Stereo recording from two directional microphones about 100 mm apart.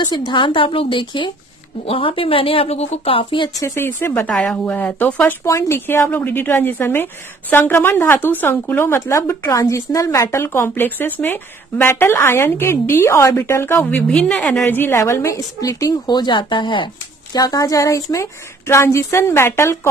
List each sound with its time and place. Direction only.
0.0 s a woman's voice: 45° left (ahead or behind)
1.9 s a woman's voice: 65° left (ahead or behind)
3.5 s a woman's voice: 30° left (ahead or behind)
5.4 s speech: 30° left (ahead or behind)
13.8 s a woman's voice: 10° left (ahead or behind)
14.7 s speech: 20° left (ahead or behind)
16.1 s speech: 50° left (ahead or behind); by 19.9 s 25° left (ahead or behind)